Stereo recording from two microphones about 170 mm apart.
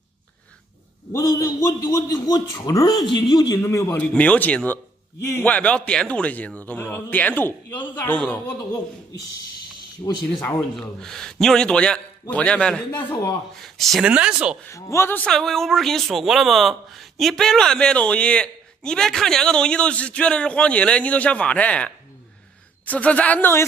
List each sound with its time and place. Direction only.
1.1 s a man's voice: 20° left (ahead or behind)
10.0 s a man's voice: 30° left (ahead or behind)
10.8 s speech: 5° left (ahead or behind)
13.1 s a man's voice: 20° left (ahead or behind)
13.6 s speech: centre (ahead or behind)
14.7 s a man's voice: 15° left (ahead or behind)